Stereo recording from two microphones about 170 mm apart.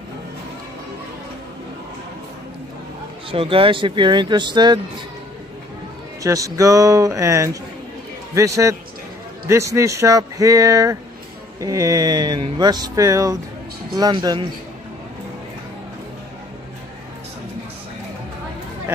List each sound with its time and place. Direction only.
3.3 s speech: 30° right (ahead or behind)
6.2 s speech: 20° right (ahead or behind)